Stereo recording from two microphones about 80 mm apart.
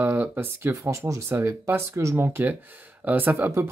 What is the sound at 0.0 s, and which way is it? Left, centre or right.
Speech, right.